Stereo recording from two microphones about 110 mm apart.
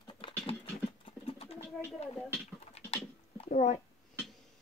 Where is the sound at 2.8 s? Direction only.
65° left (ahead or behind); by 3.8 s 90° left.